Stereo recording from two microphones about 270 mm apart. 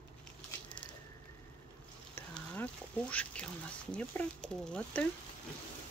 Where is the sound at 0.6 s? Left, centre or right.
Centre.